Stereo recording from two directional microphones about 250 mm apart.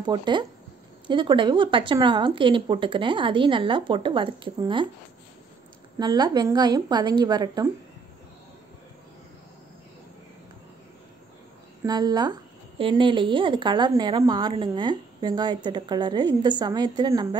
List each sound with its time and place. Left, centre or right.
0.0 s speech: centre
5.9 s speech: centre
11.8 s speech: centre